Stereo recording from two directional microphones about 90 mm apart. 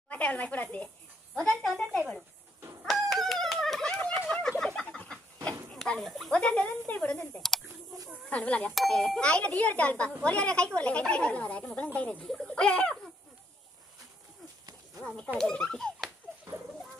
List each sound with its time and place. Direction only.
0.1 s speech: 15° left (ahead or behind)
1.3 s speech: 5° left (ahead or behind)
2.8 s a sound: centre (ahead or behind)
5.7 s speech: 5° left (ahead or behind)
6.3 s speech: 15° left (ahead or behind)
8.7 s speech: 5° left (ahead or behind)
15.1 s speech: 5° left (ahead or behind)